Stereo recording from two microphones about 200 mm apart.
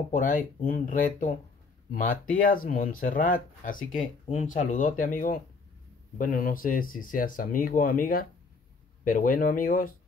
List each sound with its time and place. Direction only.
0.1 s speech: 45° left (ahead or behind)